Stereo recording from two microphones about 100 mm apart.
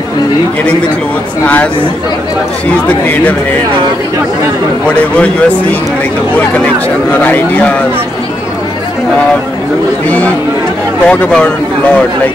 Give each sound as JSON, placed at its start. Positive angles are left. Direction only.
{"t": 1.4, "sound": "speech", "side_deg": 15}
{"t": 4.8, "sound": "speech", "side_deg": 10}
{"t": 10.0, "sound": "speech", "side_deg": 15}